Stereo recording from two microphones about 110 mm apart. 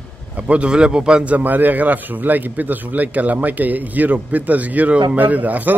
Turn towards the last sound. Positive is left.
turn(degrees=-15)  # may be behind; listen again after turning